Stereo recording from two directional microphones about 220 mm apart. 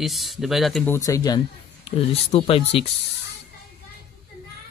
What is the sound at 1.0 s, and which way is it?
Speech, 15° left (ahead or behind).